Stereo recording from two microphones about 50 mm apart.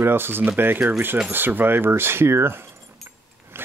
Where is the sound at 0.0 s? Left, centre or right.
Right.